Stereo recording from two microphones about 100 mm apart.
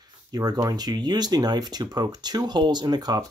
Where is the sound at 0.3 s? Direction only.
40° right (ahead or behind).